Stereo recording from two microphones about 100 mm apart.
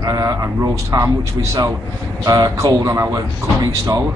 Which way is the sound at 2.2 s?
35° right (ahead or behind).